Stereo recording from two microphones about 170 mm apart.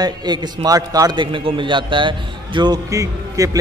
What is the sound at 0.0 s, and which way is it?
A man's voice, 25° right (ahead or behind).